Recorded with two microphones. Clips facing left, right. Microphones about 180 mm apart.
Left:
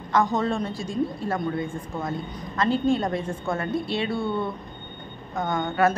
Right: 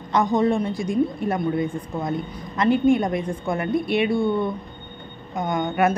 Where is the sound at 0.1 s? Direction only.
15° right (ahead or behind).